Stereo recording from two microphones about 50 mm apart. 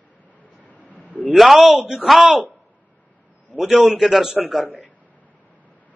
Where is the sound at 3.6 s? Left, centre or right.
Centre.